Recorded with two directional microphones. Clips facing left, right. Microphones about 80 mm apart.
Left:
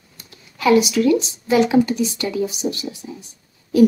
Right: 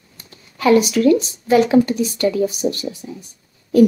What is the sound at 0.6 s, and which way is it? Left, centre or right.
A woman's voice, right.